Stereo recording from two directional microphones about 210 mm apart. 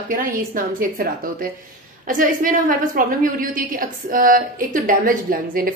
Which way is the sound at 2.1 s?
40° right (ahead or behind).